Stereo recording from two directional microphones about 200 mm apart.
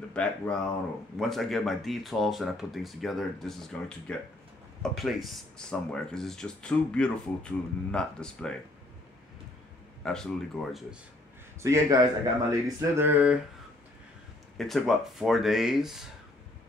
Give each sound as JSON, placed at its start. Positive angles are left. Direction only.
{"t": 0.1, "sound": "speech", "side_deg": 5}
{"t": 10.0, "sound": "speech", "side_deg": 5}
{"t": 11.6, "sound": "mantra", "side_deg": -15}
{"t": 14.6, "sound": "speech", "side_deg": 0}